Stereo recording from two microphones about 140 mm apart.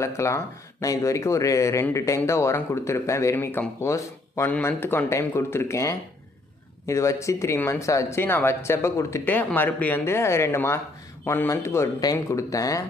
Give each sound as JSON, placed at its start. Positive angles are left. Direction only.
{"t": 0.0, "sound": "speech", "side_deg": 20}